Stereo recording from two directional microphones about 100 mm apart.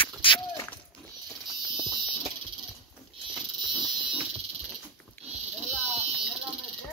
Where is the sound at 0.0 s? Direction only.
60° left (ahead or behind).